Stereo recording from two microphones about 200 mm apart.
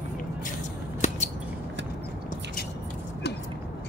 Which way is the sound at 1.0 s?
35° left (ahead or behind).